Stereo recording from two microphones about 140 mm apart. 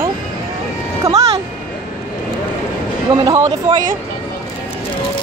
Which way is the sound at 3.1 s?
30° right (ahead or behind).